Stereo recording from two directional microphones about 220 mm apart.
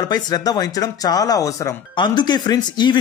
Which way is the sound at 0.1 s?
20° left (ahead or behind).